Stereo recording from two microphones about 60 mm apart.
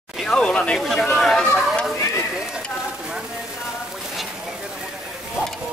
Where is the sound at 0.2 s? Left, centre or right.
Centre.